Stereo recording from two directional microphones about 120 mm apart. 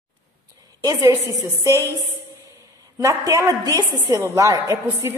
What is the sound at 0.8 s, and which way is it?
A woman's voice, 30° right (ahead or behind).